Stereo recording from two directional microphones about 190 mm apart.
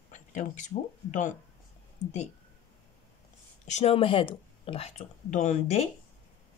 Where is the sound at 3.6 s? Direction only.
35° left (ahead or behind).